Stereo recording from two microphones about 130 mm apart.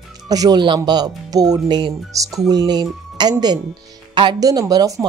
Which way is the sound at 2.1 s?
25° right (ahead or behind).